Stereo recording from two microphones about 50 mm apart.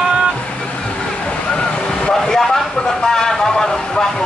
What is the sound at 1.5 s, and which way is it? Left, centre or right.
Vehicle, centre.